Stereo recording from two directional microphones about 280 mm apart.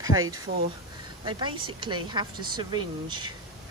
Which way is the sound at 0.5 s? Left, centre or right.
Right.